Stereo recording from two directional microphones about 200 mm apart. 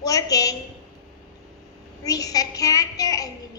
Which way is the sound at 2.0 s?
20° left (ahead or behind).